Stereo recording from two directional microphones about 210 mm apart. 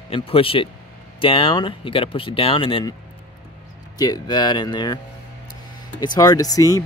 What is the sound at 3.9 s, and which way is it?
Speech, 20° left (ahead or behind).